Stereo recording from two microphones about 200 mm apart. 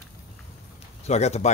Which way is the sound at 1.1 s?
35° left (ahead or behind).